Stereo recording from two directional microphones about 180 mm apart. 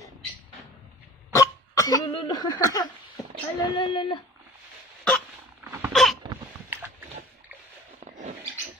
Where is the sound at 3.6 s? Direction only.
25° left (ahead or behind).